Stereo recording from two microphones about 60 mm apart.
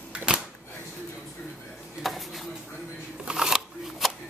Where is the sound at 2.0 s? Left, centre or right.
Centre.